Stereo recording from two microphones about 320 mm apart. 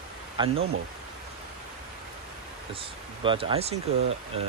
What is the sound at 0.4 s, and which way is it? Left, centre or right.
Speech, centre.